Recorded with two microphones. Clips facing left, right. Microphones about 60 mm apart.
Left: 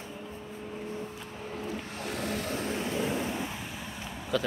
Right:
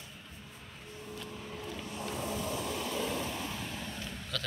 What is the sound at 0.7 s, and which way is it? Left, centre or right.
Vehicle, left.